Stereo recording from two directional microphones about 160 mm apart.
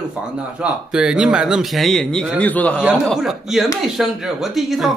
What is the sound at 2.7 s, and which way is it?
A man's voice, 5° right (ahead or behind).